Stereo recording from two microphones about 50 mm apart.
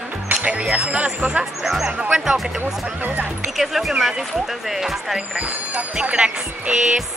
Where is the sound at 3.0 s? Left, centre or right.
Right.